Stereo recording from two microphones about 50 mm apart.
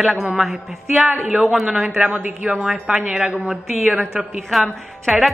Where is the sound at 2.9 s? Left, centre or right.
Centre.